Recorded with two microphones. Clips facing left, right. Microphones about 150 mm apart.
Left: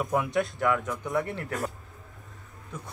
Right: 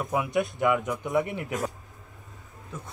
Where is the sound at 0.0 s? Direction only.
5° right (ahead or behind).